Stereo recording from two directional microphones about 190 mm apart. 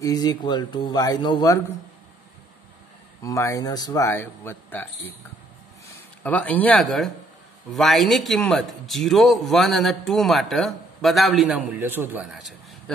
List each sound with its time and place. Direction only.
0.0 s speech: 20° left (ahead or behind)
3.2 s speech: 15° left (ahead or behind)
6.2 s a man's voice: 10° left (ahead or behind)